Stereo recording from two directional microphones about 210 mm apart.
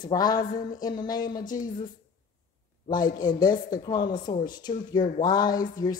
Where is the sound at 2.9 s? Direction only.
20° left (ahead or behind).